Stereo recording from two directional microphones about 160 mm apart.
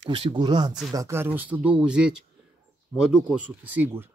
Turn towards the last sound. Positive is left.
turn(degrees=-15)  # may be behind; listen again after turning